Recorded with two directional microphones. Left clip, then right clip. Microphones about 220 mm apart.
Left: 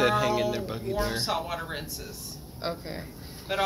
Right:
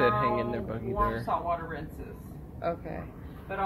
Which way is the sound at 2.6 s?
30° left (ahead or behind).